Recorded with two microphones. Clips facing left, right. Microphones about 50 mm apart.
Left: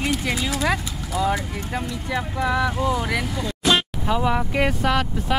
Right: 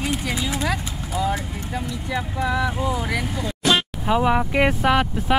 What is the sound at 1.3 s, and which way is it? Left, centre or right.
Speech, centre.